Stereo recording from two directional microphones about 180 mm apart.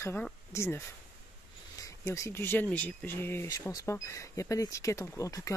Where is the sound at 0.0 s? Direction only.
10° left (ahead or behind).